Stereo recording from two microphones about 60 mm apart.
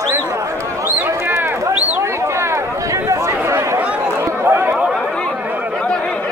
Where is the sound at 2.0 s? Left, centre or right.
Right.